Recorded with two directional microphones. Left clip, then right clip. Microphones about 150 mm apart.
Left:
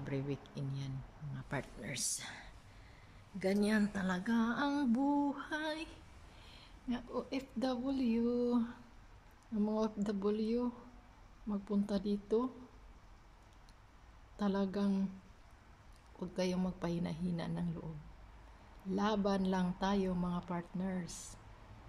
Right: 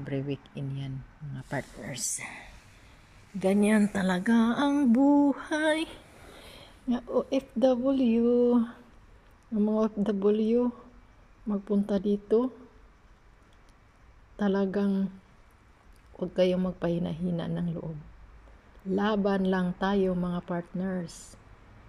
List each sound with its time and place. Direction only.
0.0 s a woman's voice: 5° right (ahead or behind)
2.0 s speech: 15° right (ahead or behind)
3.9 s a sound: 35° right (ahead or behind)
6.9 s speech: 20° right (ahead or behind)
14.3 s speech: 10° right (ahead or behind)
16.2 s speech: 5° right (ahead or behind)
18.9 s a woman's voice: 5° right (ahead or behind)